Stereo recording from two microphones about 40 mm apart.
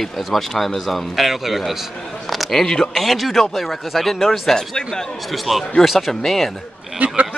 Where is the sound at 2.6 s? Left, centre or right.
Centre.